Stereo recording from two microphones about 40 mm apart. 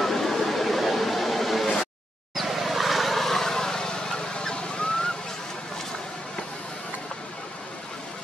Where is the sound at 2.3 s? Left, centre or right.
Centre.